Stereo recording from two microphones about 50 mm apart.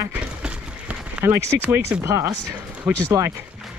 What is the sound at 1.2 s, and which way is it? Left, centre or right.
Speech, right.